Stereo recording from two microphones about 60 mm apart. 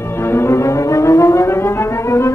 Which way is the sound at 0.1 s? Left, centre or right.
Left.